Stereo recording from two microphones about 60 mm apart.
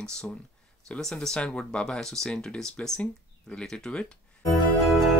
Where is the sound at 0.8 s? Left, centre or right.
Centre.